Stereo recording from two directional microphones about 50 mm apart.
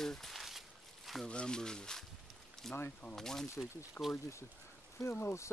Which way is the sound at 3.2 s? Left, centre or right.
Centre.